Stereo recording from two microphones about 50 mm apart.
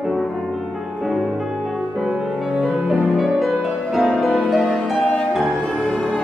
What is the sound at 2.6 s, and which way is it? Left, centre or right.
Music, centre.